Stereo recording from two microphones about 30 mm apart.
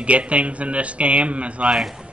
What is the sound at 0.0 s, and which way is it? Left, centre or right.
Speech, right.